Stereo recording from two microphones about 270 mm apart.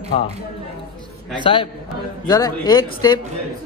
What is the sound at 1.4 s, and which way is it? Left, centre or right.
Speech, centre.